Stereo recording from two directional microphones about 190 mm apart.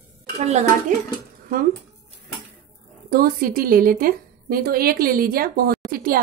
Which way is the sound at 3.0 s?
50° right (ahead or behind).